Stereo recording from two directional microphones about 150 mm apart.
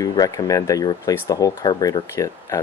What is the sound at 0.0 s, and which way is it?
A man's voice, 25° left (ahead or behind).